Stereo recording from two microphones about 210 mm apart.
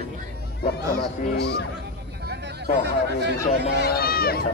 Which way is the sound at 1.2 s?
50° left (ahead or behind).